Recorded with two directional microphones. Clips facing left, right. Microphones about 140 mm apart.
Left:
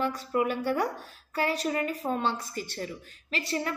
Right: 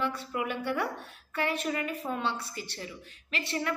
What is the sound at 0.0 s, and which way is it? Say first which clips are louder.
Speech: left 5 dB; 40° left (ahead or behind).